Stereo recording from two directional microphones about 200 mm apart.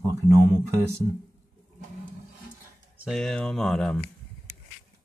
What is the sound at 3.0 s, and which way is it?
Speech, centre (ahead or behind).